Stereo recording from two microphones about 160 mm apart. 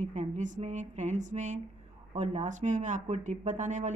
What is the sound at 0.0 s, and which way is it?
Speech, 50° right (ahead or behind).